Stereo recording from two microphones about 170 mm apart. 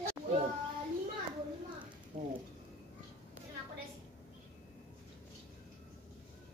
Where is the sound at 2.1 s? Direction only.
35° right (ahead or behind).